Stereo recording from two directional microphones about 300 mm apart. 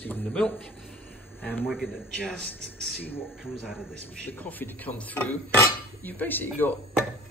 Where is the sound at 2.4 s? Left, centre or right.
Right.